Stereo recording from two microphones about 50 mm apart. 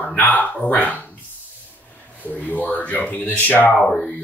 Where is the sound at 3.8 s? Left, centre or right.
Centre.